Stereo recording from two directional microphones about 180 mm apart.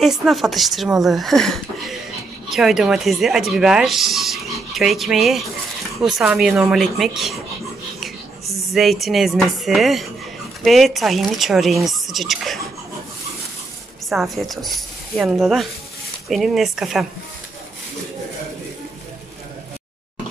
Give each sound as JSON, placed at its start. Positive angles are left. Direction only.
{"t": 0.0, "sound": "speech", "side_deg": 0}
{"t": 14.0, "sound": "a woman's voice", "side_deg": 0}